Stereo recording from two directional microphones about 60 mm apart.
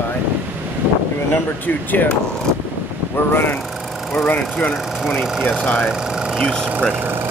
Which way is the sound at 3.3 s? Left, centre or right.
Left.